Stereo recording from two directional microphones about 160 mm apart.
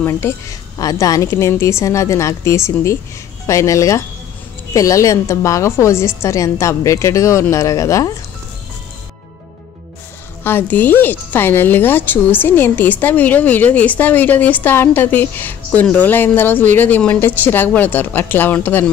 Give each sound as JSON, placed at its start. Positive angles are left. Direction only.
{"t": 0.0, "sound": "a woman's voice", "side_deg": 20}
{"t": 10.4, "sound": "speech", "side_deg": 10}